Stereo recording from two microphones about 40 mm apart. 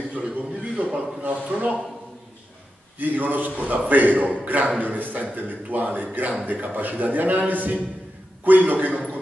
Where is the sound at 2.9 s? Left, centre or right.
Right.